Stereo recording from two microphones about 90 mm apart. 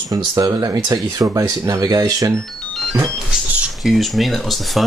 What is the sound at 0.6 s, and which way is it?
Speech, 40° right (ahead or behind).